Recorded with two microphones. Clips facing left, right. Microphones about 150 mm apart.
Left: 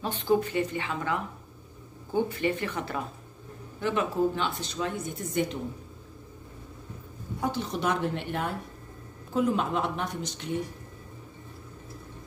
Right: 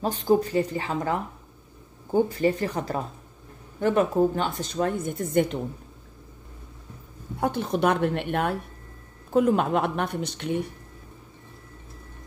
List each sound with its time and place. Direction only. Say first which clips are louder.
0.0 s a woman's voice: right 4 dB; 40° right (ahead or behind)
2.2 s a woman's voice: right 5 dB; 40° right (ahead or behind); by 5.6 s 55° right (ahead or behind)
7.3 s speech: right 5 dB; 55° right (ahead or behind)